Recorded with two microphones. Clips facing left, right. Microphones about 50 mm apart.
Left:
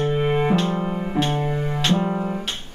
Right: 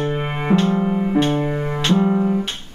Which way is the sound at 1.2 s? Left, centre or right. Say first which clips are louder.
Right 4 dB; centre.